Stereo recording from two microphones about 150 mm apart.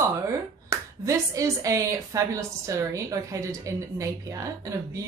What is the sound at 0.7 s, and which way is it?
Speech, 20° right (ahead or behind).